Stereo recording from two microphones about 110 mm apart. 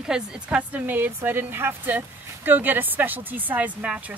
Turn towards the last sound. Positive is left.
turn(degrees=-10)  # may be behind; listen again after turning